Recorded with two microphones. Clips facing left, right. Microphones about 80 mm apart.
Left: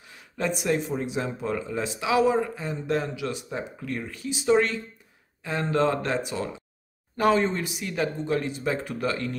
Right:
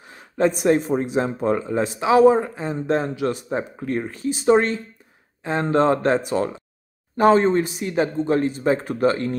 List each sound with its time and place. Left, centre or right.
0.0 s speech: right